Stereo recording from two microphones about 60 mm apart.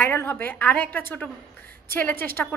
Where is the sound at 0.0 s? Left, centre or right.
Left.